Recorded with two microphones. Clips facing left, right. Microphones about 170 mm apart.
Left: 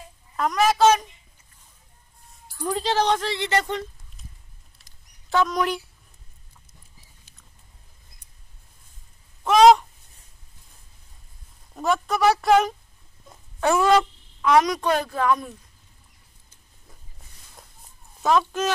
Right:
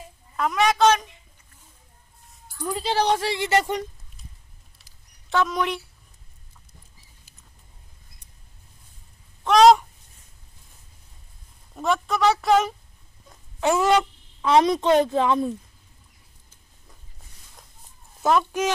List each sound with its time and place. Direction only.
0.4 s a woman's voice: centre (ahead or behind)
2.7 s speech: 10° right (ahead or behind)
4.7 s rodents: centre (ahead or behind)
9.4 s crow: 5° left (ahead or behind)
11.7 s a sound: centre (ahead or behind)
13.6 s a sound: 20° right (ahead or behind)
14.4 s speech: 25° right (ahead or behind)
17.6 s a sound: 5° left (ahead or behind)
18.2 s speech: 10° right (ahead or behind)